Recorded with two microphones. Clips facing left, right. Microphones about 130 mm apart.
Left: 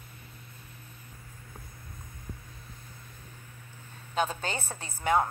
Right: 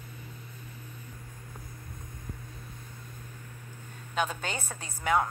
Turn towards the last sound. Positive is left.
turn(degrees=35)  # may be behind; listen again after turning